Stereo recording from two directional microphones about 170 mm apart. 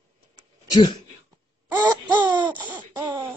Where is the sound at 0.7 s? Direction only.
25° left (ahead or behind).